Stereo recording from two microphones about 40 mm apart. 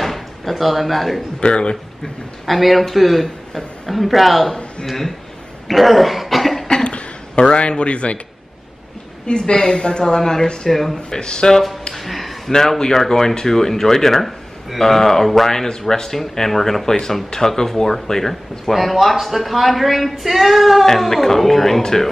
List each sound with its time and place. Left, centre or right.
0.0 s speech: centre
1.4 s speech: left
2.4 s speech: centre
5.7 s cough: centre
6.7 s cough: left
7.5 s speech: left
9.3 s speech: left
10.7 s speech: centre
11.1 s speech: left
11.9 s a sound: centre
12.5 s speech: centre